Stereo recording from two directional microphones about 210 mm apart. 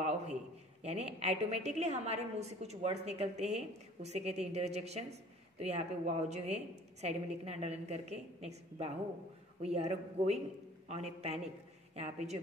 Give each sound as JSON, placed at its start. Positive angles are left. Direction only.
{"t": 0.8, "sound": "a woman's voice", "side_deg": -30}